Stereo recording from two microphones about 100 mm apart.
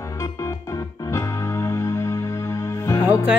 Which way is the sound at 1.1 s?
30° left (ahead or behind).